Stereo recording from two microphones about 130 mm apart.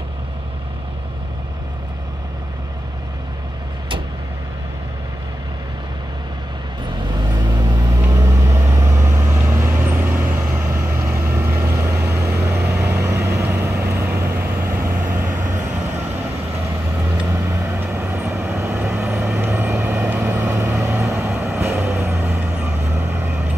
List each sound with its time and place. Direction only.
8.1 s vehicle: 25° right (ahead or behind)
17.3 s vehicle: 20° right (ahead or behind)